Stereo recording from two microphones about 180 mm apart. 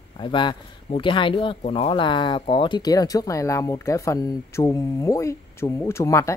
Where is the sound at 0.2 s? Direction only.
25° left (ahead or behind).